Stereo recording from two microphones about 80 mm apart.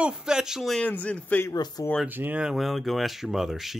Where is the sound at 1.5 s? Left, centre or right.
Left.